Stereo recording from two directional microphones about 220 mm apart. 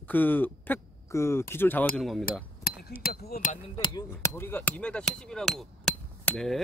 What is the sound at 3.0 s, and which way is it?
Speech, 45° left (ahead or behind).